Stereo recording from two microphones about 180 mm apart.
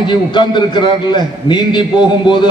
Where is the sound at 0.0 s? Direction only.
25° left (ahead or behind).